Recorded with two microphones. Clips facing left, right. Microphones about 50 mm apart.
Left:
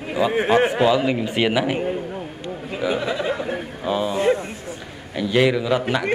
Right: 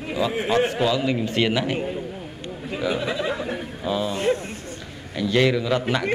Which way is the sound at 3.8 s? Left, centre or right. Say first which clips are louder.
Left 2 dB; centre.